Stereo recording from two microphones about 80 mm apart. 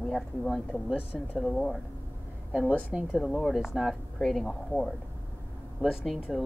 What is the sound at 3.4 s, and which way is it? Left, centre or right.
Speech, centre.